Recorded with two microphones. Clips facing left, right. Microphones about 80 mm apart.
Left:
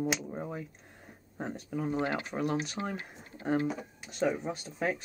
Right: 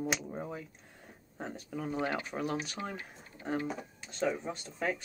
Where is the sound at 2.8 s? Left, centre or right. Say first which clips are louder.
Left 3 dB; left.